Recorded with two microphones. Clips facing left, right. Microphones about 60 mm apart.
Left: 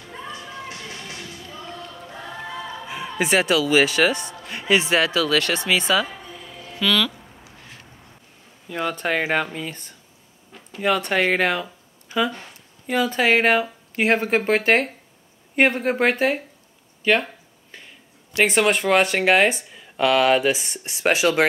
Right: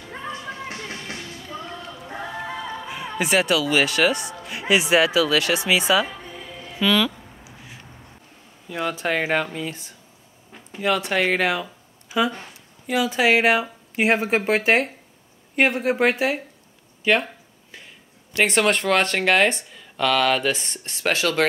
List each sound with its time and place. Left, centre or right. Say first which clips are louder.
0.3 s music: right 3 dB; right
2.9 s speech: left 1 dB; centre
6.8 s a sound: right 1 dB; centre
8.6 s speech: even; centre
17.0 s a sound: even; centre
18.3 s speech: left 1 dB; centre